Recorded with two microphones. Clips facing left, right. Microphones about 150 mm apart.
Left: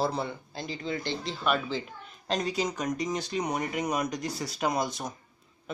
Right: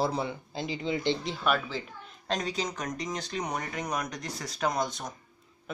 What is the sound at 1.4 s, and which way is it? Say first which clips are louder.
Speech: left 2 dB; 5° right (ahead or behind).